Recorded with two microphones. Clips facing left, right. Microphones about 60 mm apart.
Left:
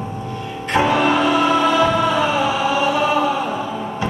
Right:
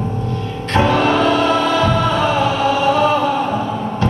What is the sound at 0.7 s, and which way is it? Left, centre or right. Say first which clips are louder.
Music: right 2 dB; centre.